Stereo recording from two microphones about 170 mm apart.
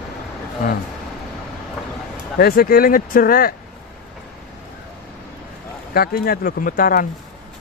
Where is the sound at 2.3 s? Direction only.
60° left (ahead or behind).